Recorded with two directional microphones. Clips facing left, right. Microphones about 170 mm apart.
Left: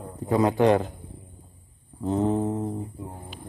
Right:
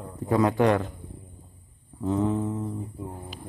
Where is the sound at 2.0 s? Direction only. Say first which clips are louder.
Left 2 dB; 35° left (ahead or behind).